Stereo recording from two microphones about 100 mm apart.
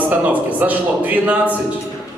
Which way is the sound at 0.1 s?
15° right (ahead or behind).